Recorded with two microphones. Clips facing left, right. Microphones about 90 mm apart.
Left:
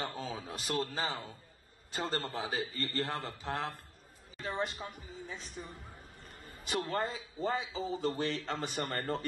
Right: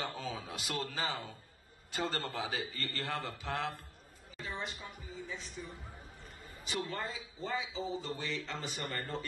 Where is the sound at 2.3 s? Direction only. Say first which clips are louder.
Left 2 dB; 35° left (ahead or behind).